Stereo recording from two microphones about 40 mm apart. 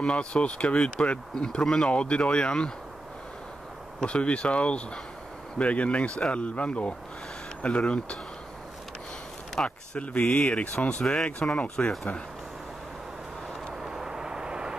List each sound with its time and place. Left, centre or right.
0.0 s speech: left
4.0 s speech: left
9.6 s speech: left
13.7 s vehicle: centre